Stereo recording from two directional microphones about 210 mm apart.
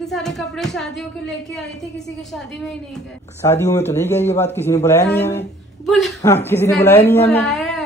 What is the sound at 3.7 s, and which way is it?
Speech, 15° left (ahead or behind).